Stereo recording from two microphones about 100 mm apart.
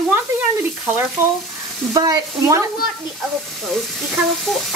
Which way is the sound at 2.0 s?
35° right (ahead or behind).